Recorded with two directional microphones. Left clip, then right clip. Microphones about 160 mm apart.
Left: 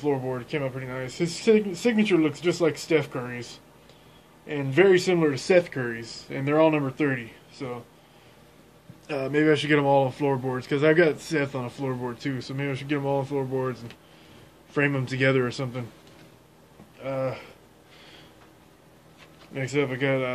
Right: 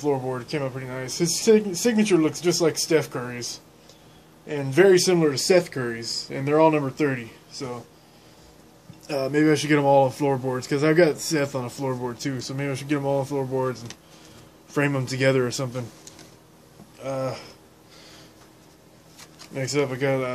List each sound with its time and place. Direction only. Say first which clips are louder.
0.0 s speech: right 2 dB; 10° right (ahead or behind)
4.5 s speech: right 2 dB; 5° right (ahead or behind)
9.0 s speech: right 2 dB; 10° right (ahead or behind)
17.0 s speech: right 1 dB; 10° right (ahead or behind)
19.5 s speech: right 2 dB; 10° right (ahead or behind)